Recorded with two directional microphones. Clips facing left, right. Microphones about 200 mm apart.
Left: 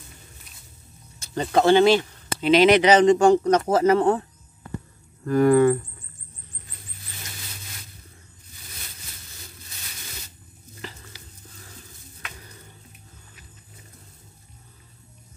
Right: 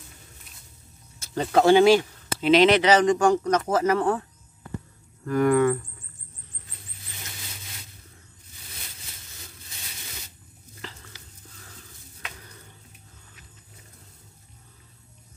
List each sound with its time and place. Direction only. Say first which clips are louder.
1.2 s speech: even; 5° right (ahead or behind)
2.7 s speech: left 3 dB; 15° left (ahead or behind)
10.8 s stir: left 2 dB; 15° left (ahead or behind)